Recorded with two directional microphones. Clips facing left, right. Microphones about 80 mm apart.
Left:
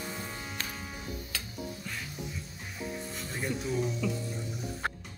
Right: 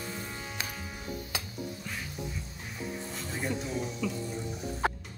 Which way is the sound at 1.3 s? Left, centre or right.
Centre.